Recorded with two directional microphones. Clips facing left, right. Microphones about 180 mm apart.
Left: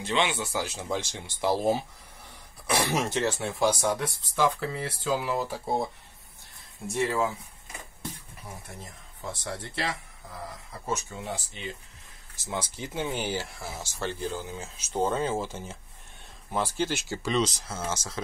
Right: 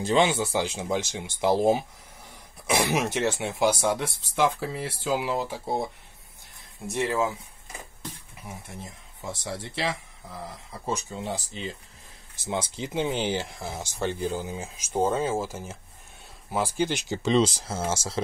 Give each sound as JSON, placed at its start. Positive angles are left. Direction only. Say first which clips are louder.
{"t": 0.0, "sound": "speech", "louder": "right 5 dB", "side_deg": -40}
{"t": 0.6, "sound": "speech", "louder": "right 4 dB", "side_deg": -15}
{"t": 6.9, "sound": "speech", "louder": "right 1 dB", "side_deg": -15}
{"t": 9.3, "sound": "speech", "louder": "right 2 dB", "side_deg": -15}
{"t": 11.1, "sound": "speech", "louder": "right 3 dB", "side_deg": -30}
{"t": 12.4, "sound": "speech", "louder": "right 4 dB", "side_deg": -20}